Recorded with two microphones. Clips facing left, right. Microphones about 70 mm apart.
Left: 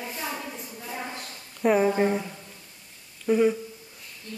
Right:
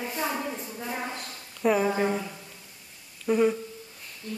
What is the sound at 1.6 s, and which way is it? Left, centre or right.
Speech, centre.